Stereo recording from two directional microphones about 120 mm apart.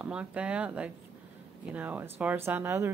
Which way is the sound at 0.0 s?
10° right (ahead or behind).